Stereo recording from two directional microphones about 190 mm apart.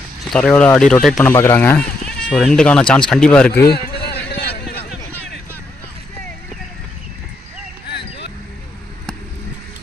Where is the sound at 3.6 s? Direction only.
55° left (ahead or behind).